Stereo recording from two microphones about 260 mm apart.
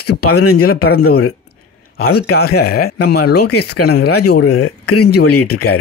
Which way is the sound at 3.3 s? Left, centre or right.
Left.